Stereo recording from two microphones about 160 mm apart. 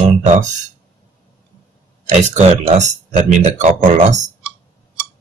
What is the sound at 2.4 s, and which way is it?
Speech, 45° right (ahead or behind).